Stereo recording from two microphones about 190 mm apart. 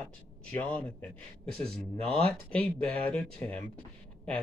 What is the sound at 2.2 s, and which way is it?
Speech, 5° left (ahead or behind).